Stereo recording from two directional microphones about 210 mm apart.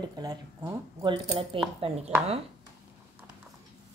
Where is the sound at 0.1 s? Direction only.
20° right (ahead or behind).